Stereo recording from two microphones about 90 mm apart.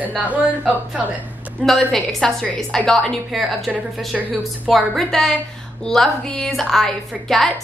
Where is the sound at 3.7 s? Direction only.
15° right (ahead or behind).